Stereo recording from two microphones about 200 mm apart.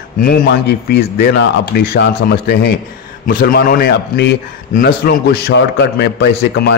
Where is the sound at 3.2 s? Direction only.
50° left (ahead or behind).